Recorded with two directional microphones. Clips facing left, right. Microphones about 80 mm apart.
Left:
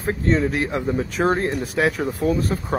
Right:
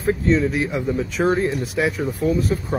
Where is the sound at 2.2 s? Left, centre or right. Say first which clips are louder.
Even; centre.